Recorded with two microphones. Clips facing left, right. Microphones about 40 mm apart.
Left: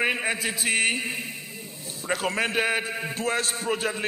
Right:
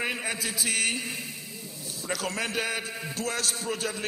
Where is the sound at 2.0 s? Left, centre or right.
Left.